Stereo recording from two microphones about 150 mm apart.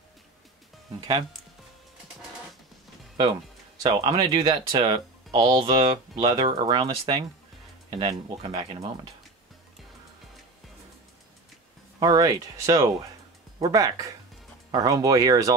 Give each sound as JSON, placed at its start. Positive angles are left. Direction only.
{"t": 3.8, "sound": "speech", "side_deg": -35}
{"t": 12.0, "sound": "speech", "side_deg": -25}